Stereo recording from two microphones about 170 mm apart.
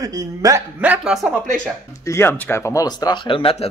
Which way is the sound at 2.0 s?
15° left (ahead or behind).